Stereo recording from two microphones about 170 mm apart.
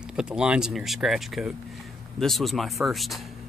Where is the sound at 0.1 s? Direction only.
5° right (ahead or behind).